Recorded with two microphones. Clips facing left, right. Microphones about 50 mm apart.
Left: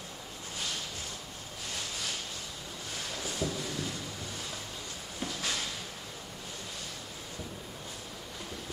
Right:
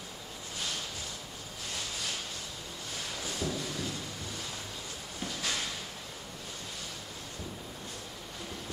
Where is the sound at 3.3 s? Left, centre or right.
Centre.